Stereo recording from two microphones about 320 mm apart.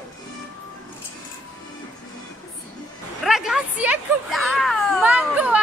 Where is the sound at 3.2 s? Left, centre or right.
Centre.